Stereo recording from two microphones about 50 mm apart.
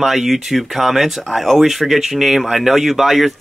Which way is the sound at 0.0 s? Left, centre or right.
Centre.